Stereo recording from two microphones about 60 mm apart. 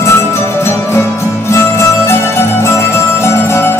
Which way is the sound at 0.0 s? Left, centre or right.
Left.